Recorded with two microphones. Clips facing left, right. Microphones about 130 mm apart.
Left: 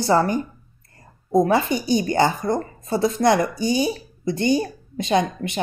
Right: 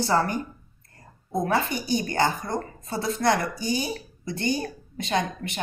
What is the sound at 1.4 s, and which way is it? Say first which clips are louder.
Speech: left 5 dB; 15° left (ahead or behind).